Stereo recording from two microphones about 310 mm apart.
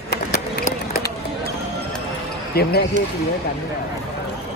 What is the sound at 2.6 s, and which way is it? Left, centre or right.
Speech, left.